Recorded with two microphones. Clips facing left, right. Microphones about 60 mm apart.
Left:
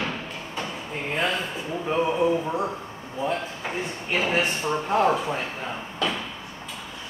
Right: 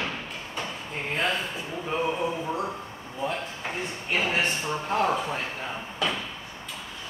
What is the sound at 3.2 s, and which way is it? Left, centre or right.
Speech, centre.